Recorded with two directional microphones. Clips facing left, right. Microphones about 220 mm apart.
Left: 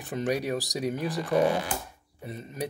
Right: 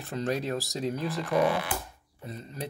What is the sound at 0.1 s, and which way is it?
Speech, 15° left (ahead or behind).